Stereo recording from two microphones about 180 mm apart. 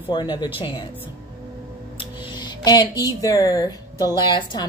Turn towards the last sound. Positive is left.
turn(degrees=25)  # may be behind; listen again after turning